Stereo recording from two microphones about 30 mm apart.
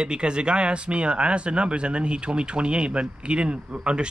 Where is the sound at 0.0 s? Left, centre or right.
Right.